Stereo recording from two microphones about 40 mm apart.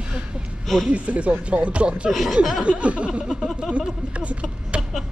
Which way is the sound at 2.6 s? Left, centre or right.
Right.